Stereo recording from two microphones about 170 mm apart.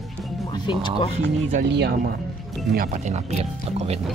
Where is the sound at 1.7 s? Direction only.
75° right (ahead or behind).